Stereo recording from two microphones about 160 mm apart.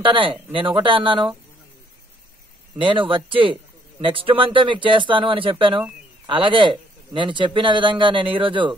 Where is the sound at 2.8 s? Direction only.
30° right (ahead or behind).